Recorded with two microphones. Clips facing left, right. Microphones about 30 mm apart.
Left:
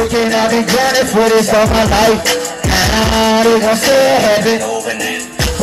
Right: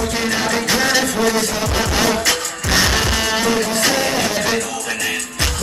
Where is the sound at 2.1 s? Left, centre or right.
Centre.